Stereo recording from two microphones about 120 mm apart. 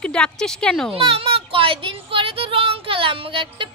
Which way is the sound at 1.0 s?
50° right (ahead or behind).